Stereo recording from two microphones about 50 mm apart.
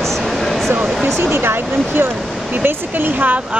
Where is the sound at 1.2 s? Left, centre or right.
Right.